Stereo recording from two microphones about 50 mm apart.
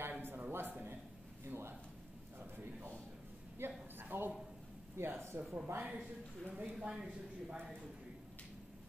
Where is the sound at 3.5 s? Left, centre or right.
Right.